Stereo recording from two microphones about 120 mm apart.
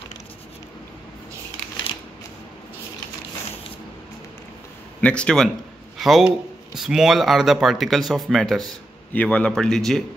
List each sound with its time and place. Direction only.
5.0 s speech: 10° left (ahead or behind)